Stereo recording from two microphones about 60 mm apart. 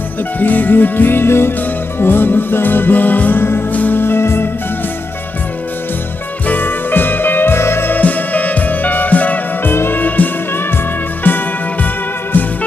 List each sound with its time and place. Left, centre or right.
0.4 s music: left
6.4 s music: left
8.0 s music: left